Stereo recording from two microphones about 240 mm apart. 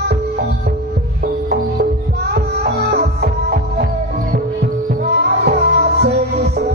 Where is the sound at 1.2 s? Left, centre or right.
Right.